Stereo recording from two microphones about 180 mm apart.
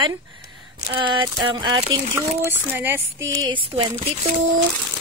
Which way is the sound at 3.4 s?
25° right (ahead or behind).